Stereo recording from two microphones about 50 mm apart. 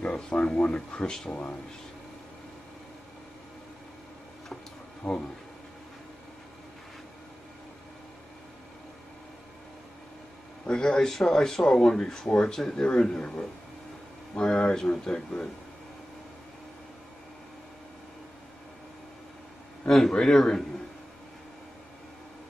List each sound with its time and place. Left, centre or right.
0.0 s a sound: left
0.6 s speech: centre
5.0 s speech: centre
10.7 s speech: centre
12.5 s speech: centre
12.8 s speech: centre
19.9 s speech: centre